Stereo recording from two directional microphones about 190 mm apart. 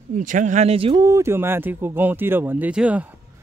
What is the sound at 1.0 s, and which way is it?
Speech, 15° right (ahead or behind).